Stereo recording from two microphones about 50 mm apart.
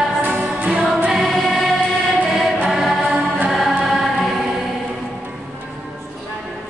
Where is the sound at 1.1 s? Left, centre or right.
Centre.